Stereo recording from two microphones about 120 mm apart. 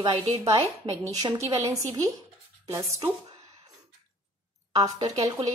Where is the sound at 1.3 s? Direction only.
25° right (ahead or behind).